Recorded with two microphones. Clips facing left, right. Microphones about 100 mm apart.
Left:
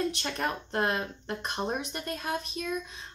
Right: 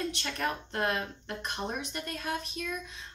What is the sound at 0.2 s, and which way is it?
Speech, 25° left (ahead or behind).